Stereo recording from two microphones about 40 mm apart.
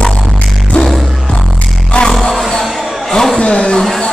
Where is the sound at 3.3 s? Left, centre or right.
Left.